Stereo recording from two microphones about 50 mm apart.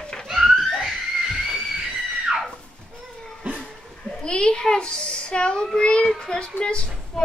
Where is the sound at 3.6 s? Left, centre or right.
Centre.